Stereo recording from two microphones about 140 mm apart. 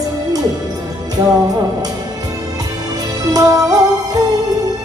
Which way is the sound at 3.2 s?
25° right (ahead or behind).